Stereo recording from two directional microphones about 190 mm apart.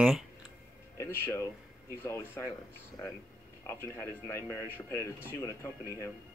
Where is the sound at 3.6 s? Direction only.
15° left (ahead or behind).